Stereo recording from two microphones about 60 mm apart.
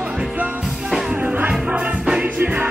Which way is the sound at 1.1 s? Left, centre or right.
Right.